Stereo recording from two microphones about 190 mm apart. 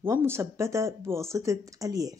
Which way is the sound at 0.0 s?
10° right (ahead or behind).